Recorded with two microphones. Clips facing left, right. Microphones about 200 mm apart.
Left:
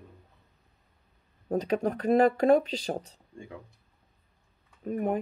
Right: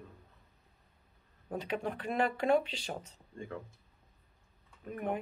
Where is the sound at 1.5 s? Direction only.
40° left (ahead or behind).